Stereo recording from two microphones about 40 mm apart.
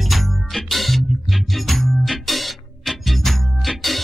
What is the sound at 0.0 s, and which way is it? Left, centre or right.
Music, centre.